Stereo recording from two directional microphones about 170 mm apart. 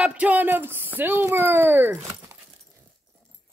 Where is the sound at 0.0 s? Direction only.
5° right (ahead or behind).